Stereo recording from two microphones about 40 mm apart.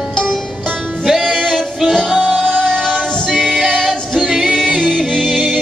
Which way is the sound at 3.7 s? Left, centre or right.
Centre.